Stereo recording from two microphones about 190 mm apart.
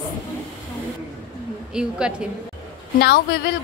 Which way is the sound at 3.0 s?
60° left (ahead or behind).